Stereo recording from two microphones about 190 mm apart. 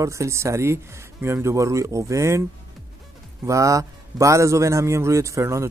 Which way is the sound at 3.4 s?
15° right (ahead or behind).